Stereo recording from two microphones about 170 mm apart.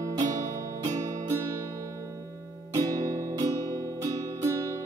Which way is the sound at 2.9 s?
20° right (ahead or behind).